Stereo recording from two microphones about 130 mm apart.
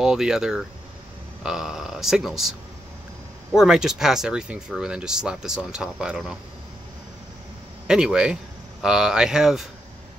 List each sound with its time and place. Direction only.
0.0 s speech: 5° right (ahead or behind)
3.5 s speech: 5° right (ahead or behind)
7.8 s a man's voice: 5° right (ahead or behind)